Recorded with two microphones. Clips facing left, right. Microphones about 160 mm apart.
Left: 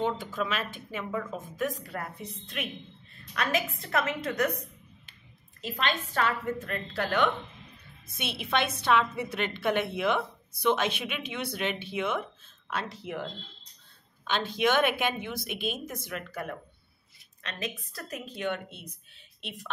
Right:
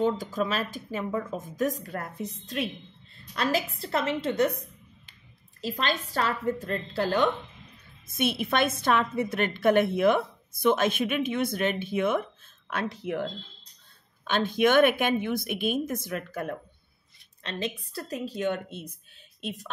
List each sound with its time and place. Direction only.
0.0 s a woman's voice: 40° right (ahead or behind)
2.4 s a woman's voice: 35° right (ahead or behind)
5.6 s a woman's voice: 35° right (ahead or behind)
8.2 s a woman's voice: 50° right (ahead or behind)
17.4 s a woman's voice: 30° right (ahead or behind)